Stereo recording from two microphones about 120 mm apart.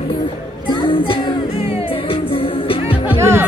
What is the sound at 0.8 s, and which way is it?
Music, 50° left (ahead or behind).